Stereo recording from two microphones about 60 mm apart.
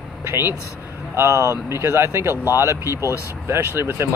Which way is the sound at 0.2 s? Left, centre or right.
Right.